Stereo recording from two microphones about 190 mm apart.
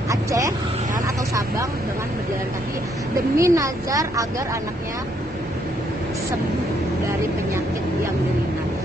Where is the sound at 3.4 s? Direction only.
15° right (ahead or behind).